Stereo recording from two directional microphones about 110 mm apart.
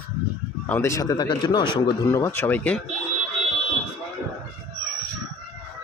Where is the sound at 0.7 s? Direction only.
25° left (ahead or behind); by 2.0 s 45° left (ahead or behind).